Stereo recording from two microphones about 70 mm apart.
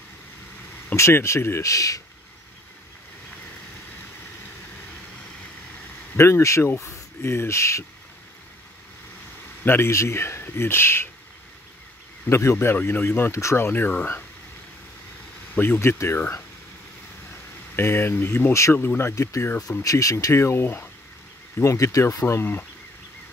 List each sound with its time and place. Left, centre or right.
0.9 s speech: left
6.1 s speech: left
9.7 s speech: left
12.3 s speech: left
13.7 s speech: left
15.5 s speech: left
17.7 s speech: left
19.8 s speech: left
21.5 s speech: left
22.3 s speech: left